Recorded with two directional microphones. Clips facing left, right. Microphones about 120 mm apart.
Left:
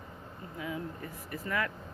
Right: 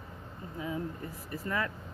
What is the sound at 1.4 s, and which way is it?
Speech, 25° right (ahead or behind).